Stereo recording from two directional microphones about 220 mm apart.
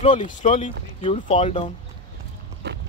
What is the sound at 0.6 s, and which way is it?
Speech, 25° left (ahead or behind).